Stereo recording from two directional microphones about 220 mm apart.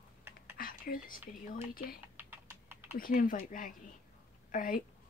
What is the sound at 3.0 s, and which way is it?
A woman's voice, 40° left (ahead or behind).